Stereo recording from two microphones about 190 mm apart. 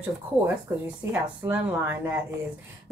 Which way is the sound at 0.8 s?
10° right (ahead or behind).